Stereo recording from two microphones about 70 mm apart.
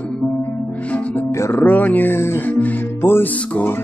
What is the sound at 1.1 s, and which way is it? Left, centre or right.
Music, left.